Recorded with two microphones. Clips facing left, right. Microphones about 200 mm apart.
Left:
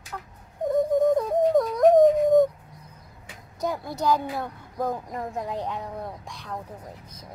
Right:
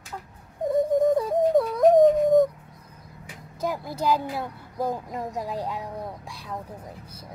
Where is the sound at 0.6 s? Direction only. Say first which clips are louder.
Even; centre (ahead or behind).